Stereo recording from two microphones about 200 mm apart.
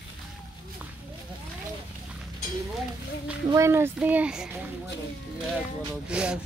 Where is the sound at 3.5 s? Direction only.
15° right (ahead or behind).